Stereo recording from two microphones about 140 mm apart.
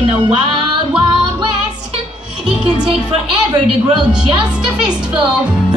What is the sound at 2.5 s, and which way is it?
Music, 5° right (ahead or behind).